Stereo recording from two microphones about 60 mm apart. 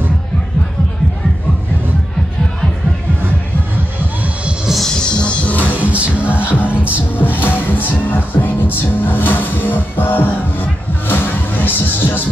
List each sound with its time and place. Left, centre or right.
4.8 s music: centre
5.7 s music: right
6.3 s music: left
6.7 s music: right
7.2 s music: left